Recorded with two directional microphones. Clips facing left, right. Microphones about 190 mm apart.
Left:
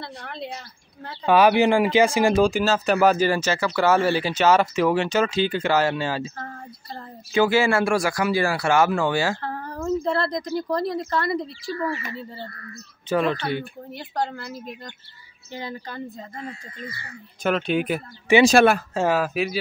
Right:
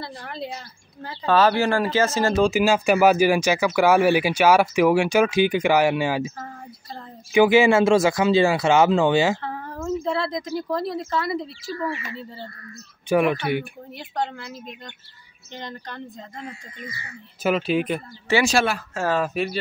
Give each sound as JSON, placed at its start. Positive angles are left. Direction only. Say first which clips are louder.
{"t": 0.0, "sound": "a woman's voice", "louder": "right 2 dB", "side_deg": 0}
{"t": 1.2, "sound": "speech", "louder": "left 2 dB", "side_deg": 15}
{"t": 2.4, "sound": "speech", "louder": "right 2 dB", "side_deg": -10}
{"t": 7.3, "sound": "speech", "louder": "right 4 dB", "side_deg": -15}
{"t": 9.4, "sound": "a woman's voice", "louder": "left 1 dB", "side_deg": 0}
{"t": 13.1, "sound": "speech", "louder": "right 3 dB", "side_deg": -15}
{"t": 13.9, "sound": "speech", "louder": "even", "side_deg": 0}
{"t": 15.5, "sound": "speech", "louder": "left 2 dB", "side_deg": 5}
{"t": 18.5, "sound": "speech", "louder": "left 6 dB", "side_deg": 50}
{"t": 19.0, "sound": "speech", "louder": "even", "side_deg": 5}